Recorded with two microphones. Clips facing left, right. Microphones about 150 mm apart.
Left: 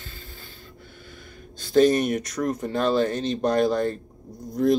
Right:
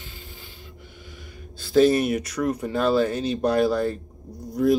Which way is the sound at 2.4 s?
10° right (ahead or behind).